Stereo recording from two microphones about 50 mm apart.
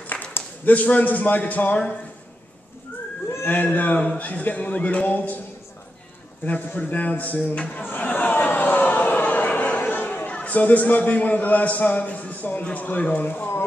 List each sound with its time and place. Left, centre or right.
0.0 s a sound: left
0.7 s a man's voice: left
3.4 s a man's voice: left
6.4 s a man's voice: left
7.7 s a sound: left
10.1 s a man's voice: left